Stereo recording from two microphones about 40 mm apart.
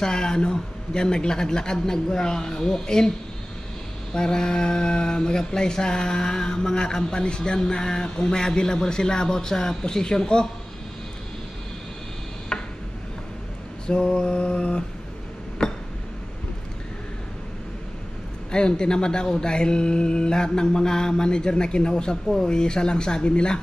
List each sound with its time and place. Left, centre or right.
0.0 s mantra: centre
4.1 s mantra: centre
12.5 s a sound: centre
13.8 s speech: left
15.6 s a sound: centre
18.5 s speech: centre